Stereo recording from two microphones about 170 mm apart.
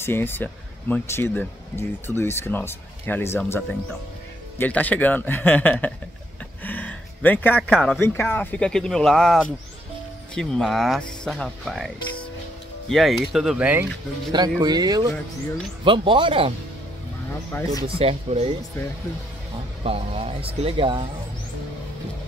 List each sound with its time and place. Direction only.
0.0 s speech: 15° left (ahead or behind)
6.6 s a sound: 10° left (ahead or behind)
8.0 s speech: 15° left (ahead or behind); by 13.8 s 10° right (ahead or behind)
14.3 s speech: 25° right (ahead or behind)
17.8 s speech: 35° right (ahead or behind)
19.8 s speech: 35° right (ahead or behind)